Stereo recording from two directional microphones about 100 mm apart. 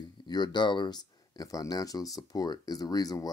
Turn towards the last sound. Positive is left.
turn(degrees=40)  # may be behind; listen again after turning